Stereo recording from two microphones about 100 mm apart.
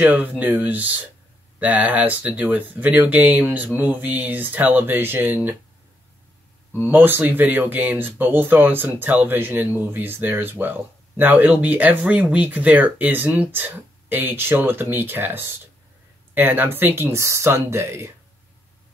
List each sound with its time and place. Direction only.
0.0 s speech: 15° right (ahead or behind)
6.9 s speech: 20° right (ahead or behind)